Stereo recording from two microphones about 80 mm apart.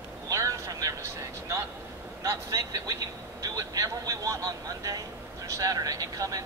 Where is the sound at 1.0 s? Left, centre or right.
Right.